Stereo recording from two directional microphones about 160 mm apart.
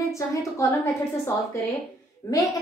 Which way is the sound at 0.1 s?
20° left (ahead or behind).